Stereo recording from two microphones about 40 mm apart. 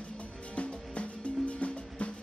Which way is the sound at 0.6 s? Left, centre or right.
Left.